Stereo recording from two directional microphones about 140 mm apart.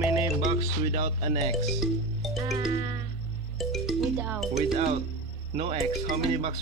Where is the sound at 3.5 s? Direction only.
Centre (ahead or behind).